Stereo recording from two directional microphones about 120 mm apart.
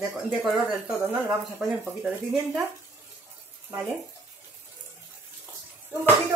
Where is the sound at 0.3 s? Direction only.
5° right (ahead or behind).